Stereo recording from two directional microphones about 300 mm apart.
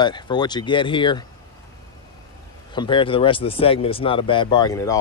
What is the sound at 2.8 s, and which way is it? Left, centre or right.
Speech, centre.